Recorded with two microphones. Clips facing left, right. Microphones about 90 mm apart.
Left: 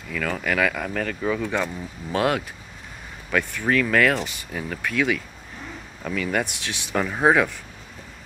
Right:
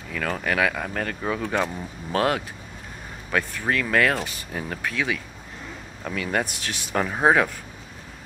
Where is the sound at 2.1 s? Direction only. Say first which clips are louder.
Even; 40° right (ahead or behind).